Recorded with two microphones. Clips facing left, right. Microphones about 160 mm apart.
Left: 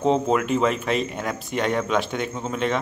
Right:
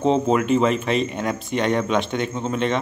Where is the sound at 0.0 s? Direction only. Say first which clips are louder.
Right 2 dB; centre (ahead or behind).